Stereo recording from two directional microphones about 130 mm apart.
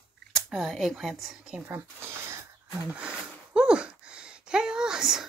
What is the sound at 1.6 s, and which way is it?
Speech, 20° right (ahead or behind).